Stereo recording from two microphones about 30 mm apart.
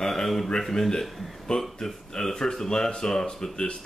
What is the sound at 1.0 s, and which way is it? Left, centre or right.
Speech, centre.